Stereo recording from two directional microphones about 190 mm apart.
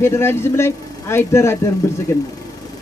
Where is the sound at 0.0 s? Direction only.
15° left (ahead or behind).